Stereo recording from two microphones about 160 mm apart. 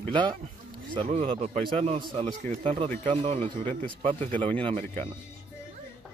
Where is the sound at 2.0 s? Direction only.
30° right (ahead or behind).